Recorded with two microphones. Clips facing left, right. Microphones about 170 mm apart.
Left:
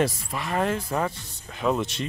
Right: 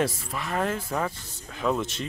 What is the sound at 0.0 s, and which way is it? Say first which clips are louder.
Speech: left 2 dB; 5° left (ahead or behind).